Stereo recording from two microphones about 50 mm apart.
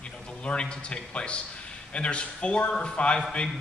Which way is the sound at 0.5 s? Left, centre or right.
Left.